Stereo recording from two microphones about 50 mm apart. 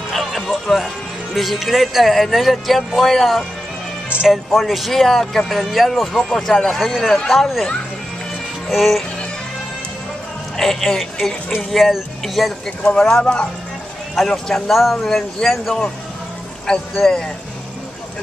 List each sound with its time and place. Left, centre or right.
0.1 s music: centre
1.3 s speech: centre
6.8 s speech: centre
10.6 s speech: centre
12.8 s speech: centre
14.1 s speech: centre
15.0 s speech: centre